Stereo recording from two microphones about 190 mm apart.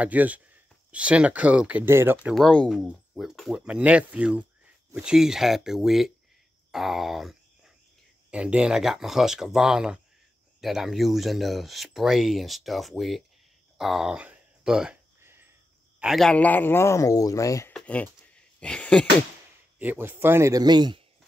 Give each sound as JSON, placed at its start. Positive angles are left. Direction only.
{"t": 0.0, "sound": "speech", "side_deg": -10}
{"t": 2.3, "sound": "speech", "side_deg": 5}
{"t": 13.7, "sound": "a sound", "side_deg": 0}
{"t": 16.0, "sound": "speech", "side_deg": 0}
{"t": 17.7, "sound": "a sound", "side_deg": 5}
{"t": 19.8, "sound": "speech", "side_deg": -10}